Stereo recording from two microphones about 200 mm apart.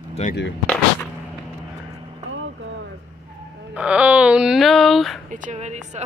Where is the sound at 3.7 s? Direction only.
5° right (ahead or behind).